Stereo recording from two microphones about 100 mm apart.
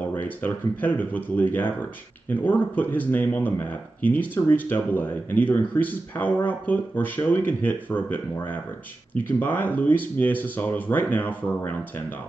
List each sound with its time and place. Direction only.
0.2 s speech: 15° left (ahead or behind)